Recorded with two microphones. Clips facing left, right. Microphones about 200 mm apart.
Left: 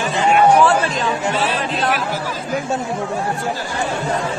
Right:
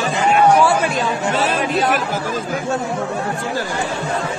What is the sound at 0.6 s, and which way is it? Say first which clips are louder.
Chatter: even; 10° right (ahead or behind).